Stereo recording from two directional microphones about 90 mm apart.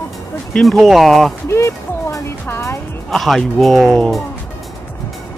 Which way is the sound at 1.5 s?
30° left (ahead or behind).